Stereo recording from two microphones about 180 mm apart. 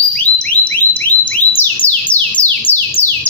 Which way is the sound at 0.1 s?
5° left (ahead or behind).